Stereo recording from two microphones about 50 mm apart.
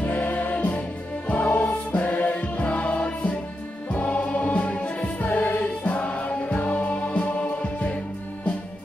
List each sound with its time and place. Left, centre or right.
0.0 s music: left